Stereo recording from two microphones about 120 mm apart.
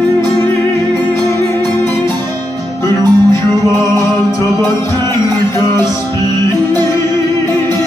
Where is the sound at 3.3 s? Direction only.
25° left (ahead or behind).